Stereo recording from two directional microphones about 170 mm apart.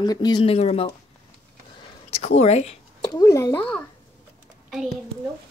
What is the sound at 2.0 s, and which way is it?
Speech, 40° left (ahead or behind).